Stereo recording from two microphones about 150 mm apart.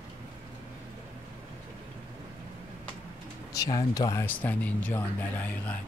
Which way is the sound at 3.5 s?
25° left (ahead or behind).